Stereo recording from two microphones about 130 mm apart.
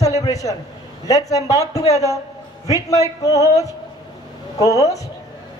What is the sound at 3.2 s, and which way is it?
Speech, 25° left (ahead or behind).